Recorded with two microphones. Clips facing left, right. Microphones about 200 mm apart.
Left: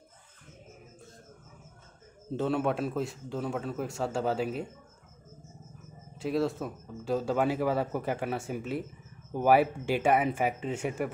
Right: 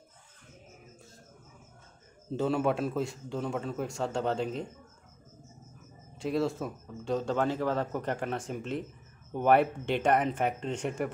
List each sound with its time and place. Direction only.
2.3 s a man's voice: centre (ahead or behind)
6.1 s a man's voice: centre (ahead or behind)